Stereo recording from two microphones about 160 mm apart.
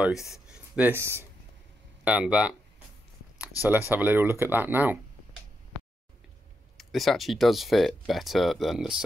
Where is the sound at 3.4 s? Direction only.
15° right (ahead or behind).